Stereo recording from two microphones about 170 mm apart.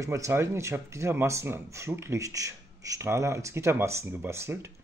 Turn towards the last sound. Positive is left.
turn(degrees=-15)  # may be behind; listen again after turning